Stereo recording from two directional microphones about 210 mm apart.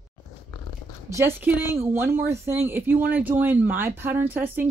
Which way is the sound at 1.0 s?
10° right (ahead or behind).